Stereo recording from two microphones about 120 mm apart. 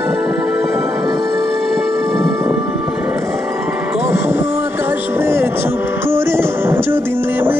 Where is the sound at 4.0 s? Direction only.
20° right (ahead or behind).